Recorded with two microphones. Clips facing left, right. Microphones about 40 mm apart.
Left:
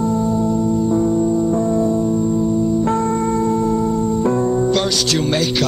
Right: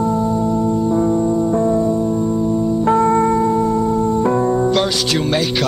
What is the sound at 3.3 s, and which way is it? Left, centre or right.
Music, centre.